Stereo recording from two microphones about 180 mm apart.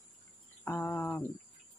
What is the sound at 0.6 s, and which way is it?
Speech, 10° left (ahead or behind).